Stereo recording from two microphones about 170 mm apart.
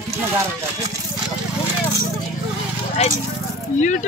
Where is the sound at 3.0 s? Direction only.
40° left (ahead or behind).